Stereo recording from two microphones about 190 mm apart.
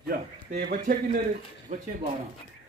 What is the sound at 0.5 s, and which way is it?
Speech, 50° right (ahead or behind).